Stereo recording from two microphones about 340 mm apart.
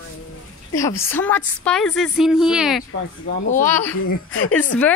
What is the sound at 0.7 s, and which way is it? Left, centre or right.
A woman's voice, centre.